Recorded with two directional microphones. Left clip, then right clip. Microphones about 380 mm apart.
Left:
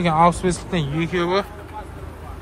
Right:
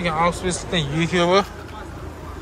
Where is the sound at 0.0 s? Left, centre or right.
Centre.